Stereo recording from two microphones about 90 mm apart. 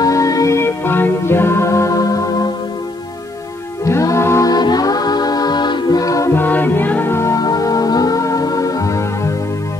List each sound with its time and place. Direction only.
0.0 s music: 40° left (ahead or behind)
3.8 s music: 35° left (ahead or behind)
4.5 s music: 50° left (ahead or behind)
6.3 s music: 20° left (ahead or behind)
7.3 s music: 40° left (ahead or behind)